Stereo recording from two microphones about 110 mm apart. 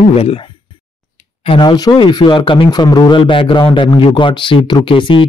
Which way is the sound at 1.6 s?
40° left (ahead or behind).